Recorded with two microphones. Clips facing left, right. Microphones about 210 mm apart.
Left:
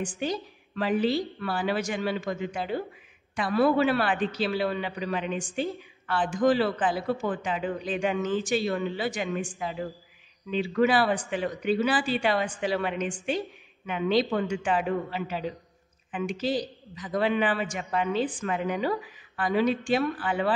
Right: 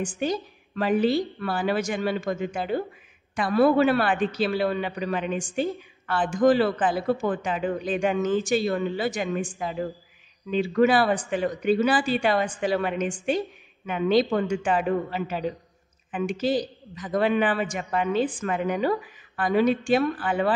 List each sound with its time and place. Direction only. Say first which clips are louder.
0.0 s speech: right 3 dB; 45° right (ahead or behind)